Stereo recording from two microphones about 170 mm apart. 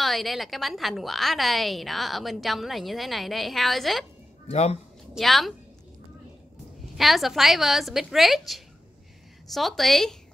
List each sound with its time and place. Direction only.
0.0 s a woman's voice: centre (ahead or behind)
4.5 s speech: 35° left (ahead or behind)
5.1 s a woman's voice: centre (ahead or behind)
7.0 s a woman's voice: centre (ahead or behind)